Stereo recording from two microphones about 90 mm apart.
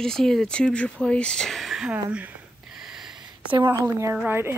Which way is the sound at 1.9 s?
20° right (ahead or behind).